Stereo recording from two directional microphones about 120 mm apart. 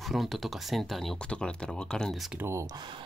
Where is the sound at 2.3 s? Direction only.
25° right (ahead or behind).